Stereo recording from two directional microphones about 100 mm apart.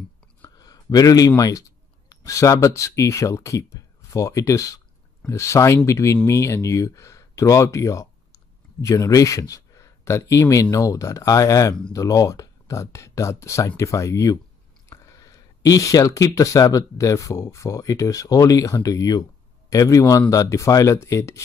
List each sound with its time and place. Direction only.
0.6 s speech: 40° left (ahead or behind)